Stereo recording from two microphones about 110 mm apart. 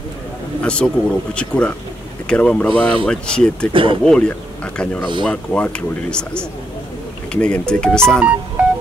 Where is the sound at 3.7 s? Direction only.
50° right (ahead or behind).